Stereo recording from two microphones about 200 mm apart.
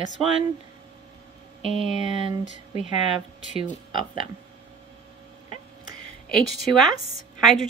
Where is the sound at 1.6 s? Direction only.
30° right (ahead or behind).